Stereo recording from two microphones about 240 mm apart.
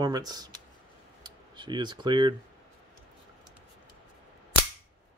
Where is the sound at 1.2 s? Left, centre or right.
Centre.